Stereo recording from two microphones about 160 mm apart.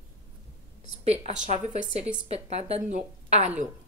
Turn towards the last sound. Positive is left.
turn(degrees=-45)  # may be behind; listen again after turning